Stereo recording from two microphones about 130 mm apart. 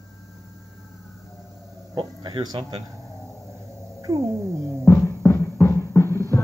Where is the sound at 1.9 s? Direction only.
35° right (ahead or behind).